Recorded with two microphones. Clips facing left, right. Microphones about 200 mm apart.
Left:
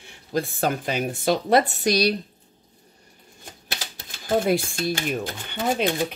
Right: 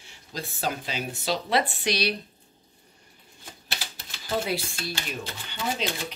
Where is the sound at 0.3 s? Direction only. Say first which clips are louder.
Left 7 dB; 55° left (ahead or behind).